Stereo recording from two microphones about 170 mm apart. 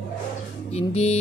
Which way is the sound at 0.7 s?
40° left (ahead or behind).